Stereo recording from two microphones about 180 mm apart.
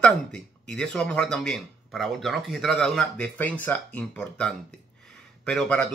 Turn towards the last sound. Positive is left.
turn(degrees=5)  # may be behind; listen again after turning